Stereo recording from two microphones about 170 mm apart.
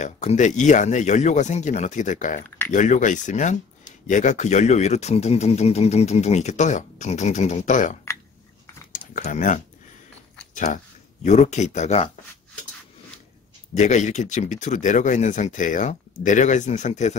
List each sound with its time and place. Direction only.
0.0 s speech: 45° left (ahead or behind)
8.9 s typing: 50° left (ahead or behind)
10.5 s a sound: 50° left (ahead or behind)
11.2 s speech: 40° left (ahead or behind)
13.7 s speech: 45° left (ahead or behind)